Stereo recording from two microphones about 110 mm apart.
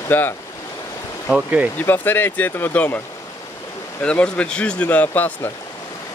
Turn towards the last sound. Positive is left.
turn(degrees=15)  # may be behind; listen again after turning